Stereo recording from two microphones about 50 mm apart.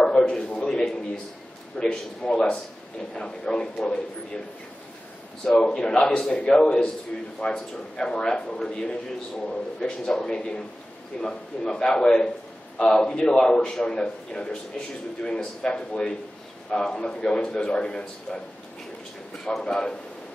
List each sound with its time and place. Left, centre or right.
0.0 s a sound: centre
1.8 s a man's voice: centre
5.5 s a man's voice: centre
19.4 s a man's voice: centre